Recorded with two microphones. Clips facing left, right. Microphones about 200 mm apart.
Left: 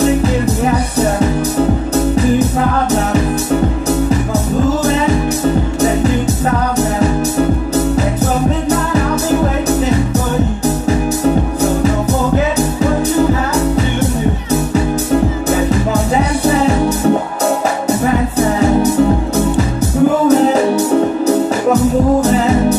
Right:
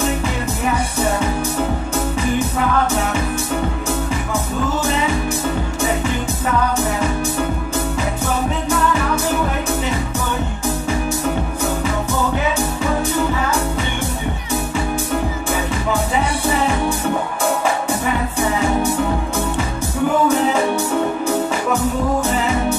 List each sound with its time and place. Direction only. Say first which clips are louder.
7.0 s music: left 7 dB; 40° left (ahead or behind)
10.9 s music: left 8 dB; 40° left (ahead or behind)
15.7 s music: left 6 dB; 40° left (ahead or behind)
20.2 s music: left 6 dB; 40° left (ahead or behind)
22.2 s music: left 7 dB; 40° left (ahead or behind)